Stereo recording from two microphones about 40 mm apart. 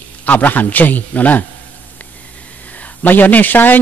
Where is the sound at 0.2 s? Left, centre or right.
Left.